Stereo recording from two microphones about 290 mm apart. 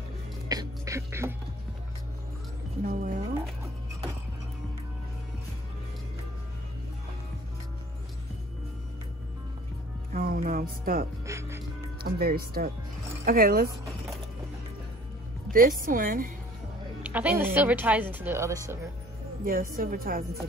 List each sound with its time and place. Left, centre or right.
0.5 s speech: centre
2.8 s a woman's voice: right
10.1 s music: right
11.2 s music: centre
12.0 s a woman's voice: right
15.8 s a woman's voice: right
17.0 s speech: centre
19.4 s a woman's voice: right